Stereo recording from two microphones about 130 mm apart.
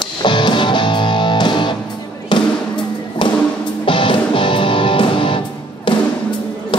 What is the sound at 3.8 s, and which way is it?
Music, 40° left (ahead or behind).